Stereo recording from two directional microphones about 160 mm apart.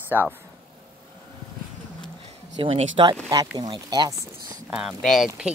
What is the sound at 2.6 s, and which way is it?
Speech, 35° right (ahead or behind).